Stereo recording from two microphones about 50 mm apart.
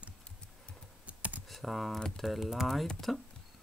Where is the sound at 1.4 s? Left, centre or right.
Centre.